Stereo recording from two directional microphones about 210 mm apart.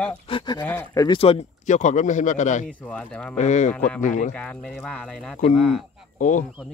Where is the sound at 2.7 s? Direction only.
5° left (ahead or behind).